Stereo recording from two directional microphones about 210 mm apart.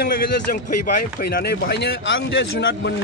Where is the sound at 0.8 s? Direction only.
45° left (ahead or behind).